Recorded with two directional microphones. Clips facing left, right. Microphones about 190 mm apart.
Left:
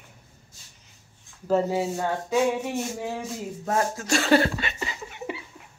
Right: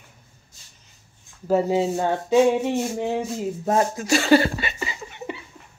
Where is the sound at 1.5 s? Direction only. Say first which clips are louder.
Right 3 dB; 10° right (ahead or behind).